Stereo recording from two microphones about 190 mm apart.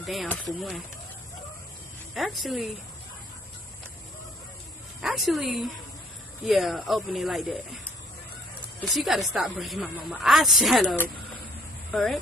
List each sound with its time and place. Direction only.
0.0 s speech: centre (ahead or behind)
2.1 s speech: centre (ahead or behind)
5.0 s speech: centre (ahead or behind)
8.8 s speech: centre (ahead or behind)